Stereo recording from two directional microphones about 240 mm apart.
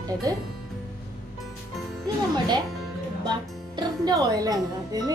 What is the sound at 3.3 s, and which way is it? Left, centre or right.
A child's voice, centre.